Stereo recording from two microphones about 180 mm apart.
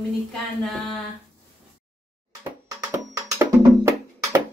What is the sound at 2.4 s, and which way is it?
Music, 15° right (ahead or behind).